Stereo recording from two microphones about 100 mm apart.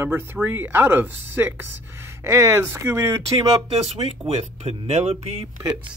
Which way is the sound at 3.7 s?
90° right.